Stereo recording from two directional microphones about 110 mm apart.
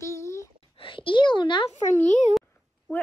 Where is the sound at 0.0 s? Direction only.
25° left (ahead or behind).